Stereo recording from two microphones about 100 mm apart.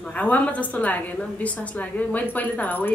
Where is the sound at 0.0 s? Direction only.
15° left (ahead or behind).